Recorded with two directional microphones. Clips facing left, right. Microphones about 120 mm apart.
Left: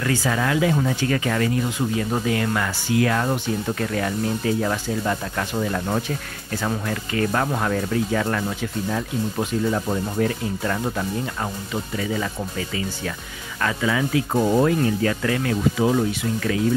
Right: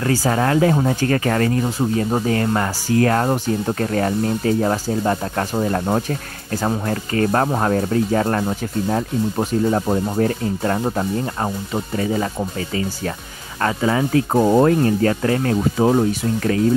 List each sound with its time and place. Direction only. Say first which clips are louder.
0.0 s speech: right 4 dB; 40° right (ahead or behind)